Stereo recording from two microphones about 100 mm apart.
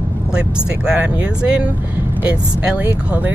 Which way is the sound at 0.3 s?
10° right (ahead or behind).